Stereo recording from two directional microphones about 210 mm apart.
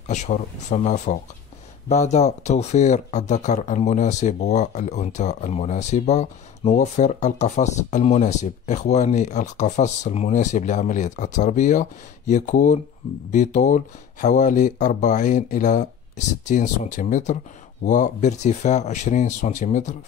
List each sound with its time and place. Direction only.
0.1 s speech: 35° left (ahead or behind)